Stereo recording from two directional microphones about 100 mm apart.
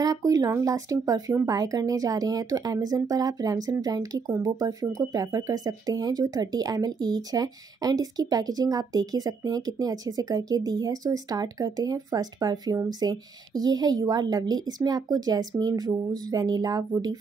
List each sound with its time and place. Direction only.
0.0 s speech: 35° right (ahead or behind)